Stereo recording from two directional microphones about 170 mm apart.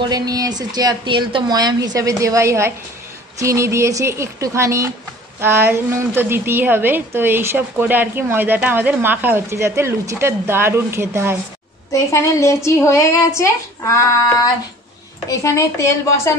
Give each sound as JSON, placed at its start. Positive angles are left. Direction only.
{"t": 0.0, "sound": "a woman's voice", "side_deg": -25}
{"t": 11.9, "sound": "a woman's voice", "side_deg": 15}